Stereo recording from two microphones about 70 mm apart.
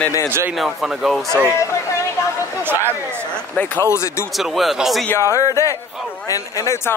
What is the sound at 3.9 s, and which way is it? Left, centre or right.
Speech, left.